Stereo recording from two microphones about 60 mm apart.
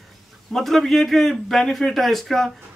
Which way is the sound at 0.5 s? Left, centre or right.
Centre.